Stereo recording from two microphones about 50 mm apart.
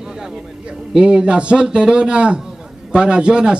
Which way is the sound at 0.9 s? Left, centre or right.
Right.